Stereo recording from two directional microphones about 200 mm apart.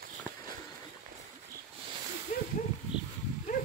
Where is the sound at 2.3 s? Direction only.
40° left (ahead or behind).